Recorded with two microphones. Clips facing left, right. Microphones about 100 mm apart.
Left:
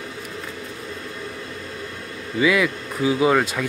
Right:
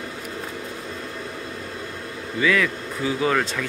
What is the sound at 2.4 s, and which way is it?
Speech, 10° left (ahead or behind).